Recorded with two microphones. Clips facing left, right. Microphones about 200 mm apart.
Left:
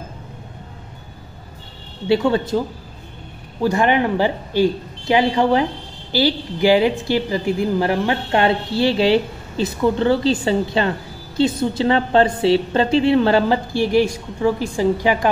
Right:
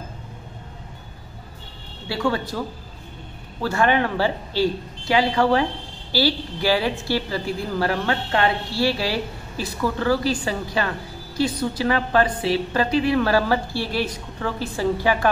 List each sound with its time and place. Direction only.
2.0 s a woman's voice: 20° left (ahead or behind)
3.6 s a woman's voice: 15° left (ahead or behind)